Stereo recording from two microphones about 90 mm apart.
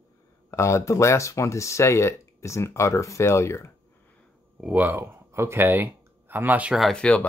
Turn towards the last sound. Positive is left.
turn(degrees=10)  # may be behind; listen again after turning